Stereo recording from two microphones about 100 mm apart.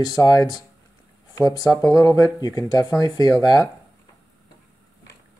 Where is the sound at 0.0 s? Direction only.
45° left (ahead or behind).